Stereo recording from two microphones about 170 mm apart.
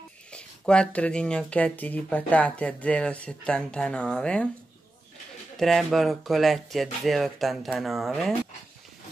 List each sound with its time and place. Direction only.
0.3 s speech: 5° left (ahead or behind)
5.6 s speech: centre (ahead or behind)